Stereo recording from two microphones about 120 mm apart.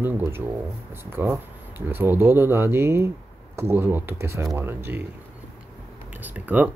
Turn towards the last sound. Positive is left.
turn(degrees=-15)  # may be behind; listen again after turning